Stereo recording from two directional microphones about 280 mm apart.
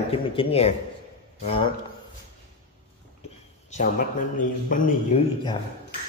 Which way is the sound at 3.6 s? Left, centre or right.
Left.